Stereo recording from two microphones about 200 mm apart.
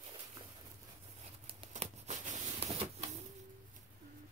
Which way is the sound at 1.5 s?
30° right (ahead or behind).